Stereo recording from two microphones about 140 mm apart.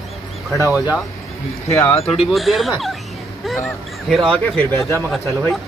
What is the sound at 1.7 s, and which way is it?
Speech, 20° left (ahead or behind).